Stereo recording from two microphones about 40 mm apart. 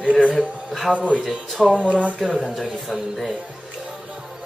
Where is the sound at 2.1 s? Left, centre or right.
Centre.